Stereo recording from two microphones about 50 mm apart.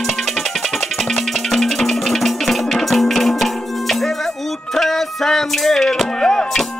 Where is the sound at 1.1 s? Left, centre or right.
Centre.